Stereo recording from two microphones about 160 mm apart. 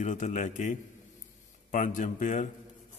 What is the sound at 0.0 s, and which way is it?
A man's voice, 50° left (ahead or behind).